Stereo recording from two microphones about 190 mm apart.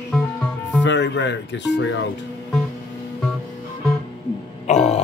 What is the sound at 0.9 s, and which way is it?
Music, 70° left (ahead or behind).